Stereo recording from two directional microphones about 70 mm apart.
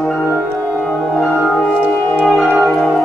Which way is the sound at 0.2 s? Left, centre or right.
Centre.